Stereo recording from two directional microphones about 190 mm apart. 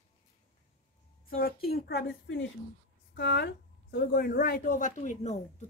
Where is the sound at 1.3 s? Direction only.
50° left (ahead or behind).